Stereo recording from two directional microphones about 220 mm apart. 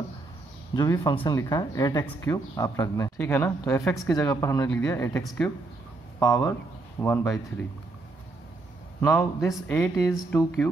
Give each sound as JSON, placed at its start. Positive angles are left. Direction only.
{"t": 0.7, "sound": "speech", "side_deg": 15}
{"t": 9.0, "sound": "speech", "side_deg": 10}